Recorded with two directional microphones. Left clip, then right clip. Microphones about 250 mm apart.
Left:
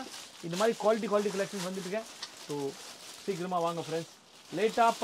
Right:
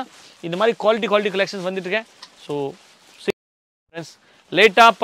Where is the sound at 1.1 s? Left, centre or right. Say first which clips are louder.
Right 11 dB; right.